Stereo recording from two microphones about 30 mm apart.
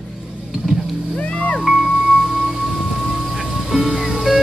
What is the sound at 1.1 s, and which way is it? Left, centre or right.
Music, left.